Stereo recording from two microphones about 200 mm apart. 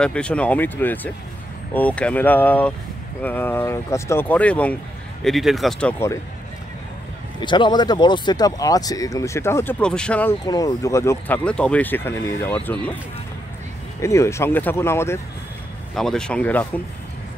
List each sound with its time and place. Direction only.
0.0 s speech: 5° left (ahead or behind)
7.3 s speech: 20° left (ahead or behind); by 10.3 s 5° left (ahead or behind)
10.4 s speech: 20° left (ahead or behind)
14.0 s speech: 15° left (ahead or behind)